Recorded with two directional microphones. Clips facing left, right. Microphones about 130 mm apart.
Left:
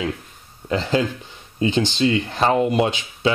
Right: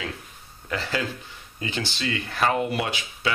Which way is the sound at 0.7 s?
25° left (ahead or behind).